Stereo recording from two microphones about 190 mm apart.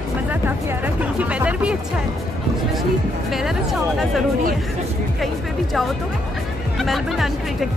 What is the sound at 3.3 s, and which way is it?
Speech, centre (ahead or behind).